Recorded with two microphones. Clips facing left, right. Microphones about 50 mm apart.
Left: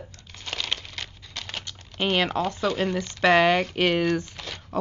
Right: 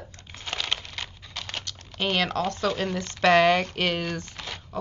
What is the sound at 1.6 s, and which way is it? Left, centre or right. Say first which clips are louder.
Speech: left 3 dB; centre.